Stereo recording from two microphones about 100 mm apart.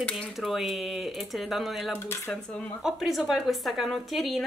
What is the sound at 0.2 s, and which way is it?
A woman's voice, centre (ahead or behind).